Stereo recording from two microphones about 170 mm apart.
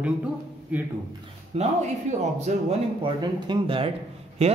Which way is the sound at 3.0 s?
30° right (ahead or behind).